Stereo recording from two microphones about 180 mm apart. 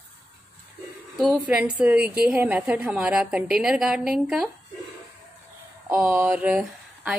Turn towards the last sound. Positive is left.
turn(degrees=-5)  # may be behind; listen again after turning